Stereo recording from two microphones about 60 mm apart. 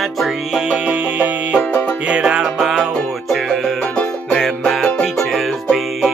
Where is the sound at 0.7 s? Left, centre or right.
Right.